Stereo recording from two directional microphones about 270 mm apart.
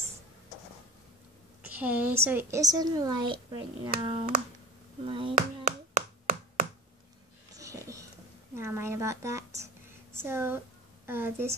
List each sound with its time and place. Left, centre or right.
1.6 s a woman's voice: centre
5.3 s clapping: right
7.5 s a sound: centre
8.5 s a child's voice: centre